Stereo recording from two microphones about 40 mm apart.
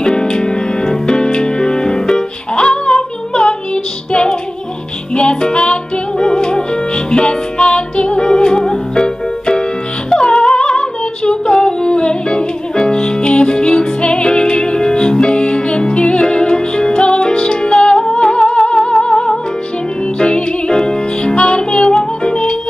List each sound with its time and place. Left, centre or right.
0.0 s music: left